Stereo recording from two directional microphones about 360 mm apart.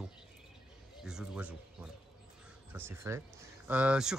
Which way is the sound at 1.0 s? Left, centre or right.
Centre.